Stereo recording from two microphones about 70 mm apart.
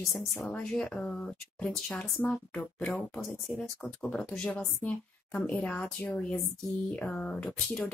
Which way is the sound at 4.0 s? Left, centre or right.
Centre.